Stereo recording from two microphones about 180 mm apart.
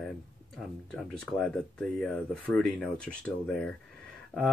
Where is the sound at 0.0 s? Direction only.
Centre (ahead or behind).